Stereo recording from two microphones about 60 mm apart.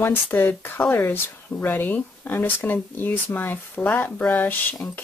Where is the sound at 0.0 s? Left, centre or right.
Left.